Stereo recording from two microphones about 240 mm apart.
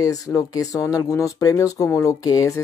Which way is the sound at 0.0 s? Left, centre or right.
Centre.